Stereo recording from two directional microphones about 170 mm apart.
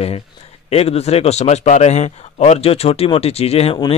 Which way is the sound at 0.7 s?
35° left (ahead or behind).